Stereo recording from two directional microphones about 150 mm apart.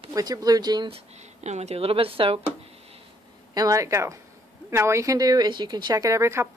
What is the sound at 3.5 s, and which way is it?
Speech, 25° right (ahead or behind).